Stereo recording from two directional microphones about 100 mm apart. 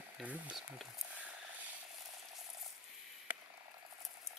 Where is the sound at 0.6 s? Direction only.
Centre (ahead or behind).